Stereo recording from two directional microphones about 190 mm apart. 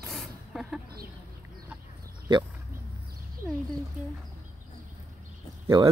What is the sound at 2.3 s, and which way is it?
Speech, 25° right (ahead or behind).